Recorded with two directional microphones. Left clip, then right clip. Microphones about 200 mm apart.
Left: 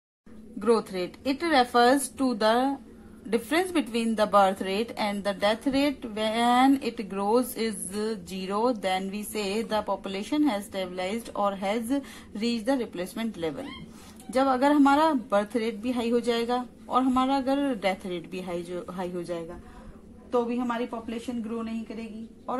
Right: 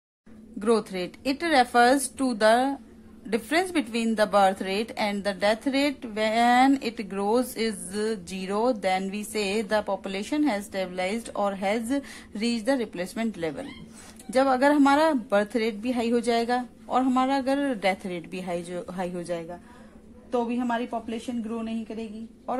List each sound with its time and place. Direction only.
0.6 s a woman's voice: 15° right (ahead or behind)